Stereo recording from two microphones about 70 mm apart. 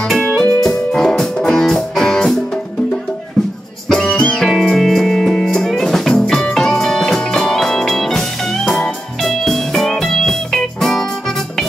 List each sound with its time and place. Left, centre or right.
0.0 s music: centre
4.1 s music: left
4.4 s music: centre